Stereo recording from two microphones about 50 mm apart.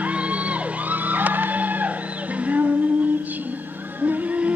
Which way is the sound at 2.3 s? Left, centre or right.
Right.